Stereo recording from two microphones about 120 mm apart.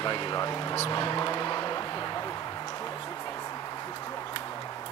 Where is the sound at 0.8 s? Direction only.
40° left (ahead or behind).